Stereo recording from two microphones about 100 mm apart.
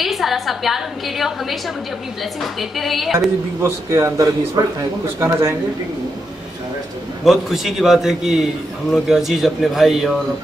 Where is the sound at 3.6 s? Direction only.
25° right (ahead or behind).